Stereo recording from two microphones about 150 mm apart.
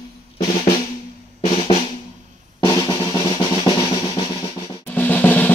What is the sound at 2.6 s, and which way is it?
Drum, 30° left (ahead or behind).